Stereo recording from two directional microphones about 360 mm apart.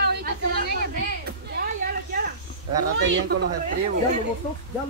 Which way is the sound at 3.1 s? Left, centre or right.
Right.